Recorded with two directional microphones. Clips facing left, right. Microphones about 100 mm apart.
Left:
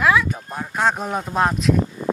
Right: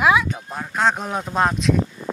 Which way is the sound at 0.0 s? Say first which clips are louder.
Even; 15° right (ahead or behind).